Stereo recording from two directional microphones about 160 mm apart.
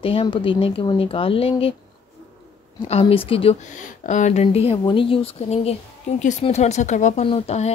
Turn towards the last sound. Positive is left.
turn(degrees=40)  # may be behind; listen again after turning